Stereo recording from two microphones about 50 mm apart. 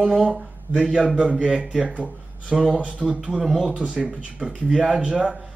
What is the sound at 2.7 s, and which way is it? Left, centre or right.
Speech, right.